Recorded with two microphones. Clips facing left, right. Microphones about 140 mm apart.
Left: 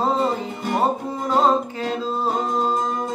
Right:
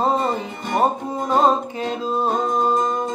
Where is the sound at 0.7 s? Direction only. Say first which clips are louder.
Right 3 dB; 15° right (ahead or behind).